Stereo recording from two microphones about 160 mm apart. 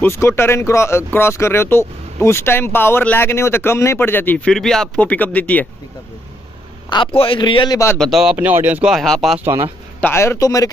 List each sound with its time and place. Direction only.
0.0 s speech: 15° left (ahead or behind)
7.2 s speech: 30° left (ahead or behind)
8.0 s speech: centre (ahead or behind)
8.4 s speech: 10° right (ahead or behind)
9.4 s speech: 15° right (ahead or behind)
9.9 s speech: 15° left (ahead or behind)